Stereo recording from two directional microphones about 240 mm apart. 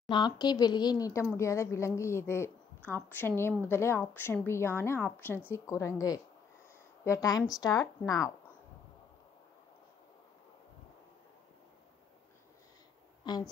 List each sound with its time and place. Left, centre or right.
0.1 s a woman's voice: centre
13.2 s speech: centre